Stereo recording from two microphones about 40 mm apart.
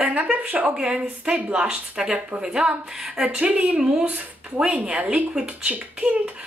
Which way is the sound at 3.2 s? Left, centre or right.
Right.